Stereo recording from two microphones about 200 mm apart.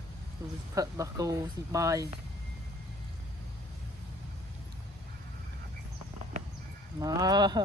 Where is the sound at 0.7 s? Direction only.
15° right (ahead or behind).